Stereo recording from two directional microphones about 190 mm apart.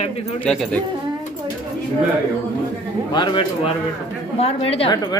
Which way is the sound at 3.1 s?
25° left (ahead or behind).